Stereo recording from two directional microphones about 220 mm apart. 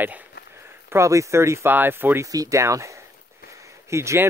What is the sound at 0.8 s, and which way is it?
Speech, 15° right (ahead or behind).